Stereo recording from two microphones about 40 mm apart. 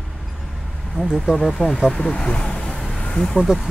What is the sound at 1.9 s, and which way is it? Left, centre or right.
Speech, left.